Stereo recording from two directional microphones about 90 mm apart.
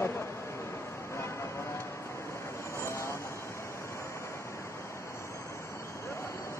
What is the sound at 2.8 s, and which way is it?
Vehicle, 30° left (ahead or behind).